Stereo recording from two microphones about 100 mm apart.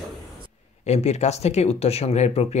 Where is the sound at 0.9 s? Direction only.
90° left.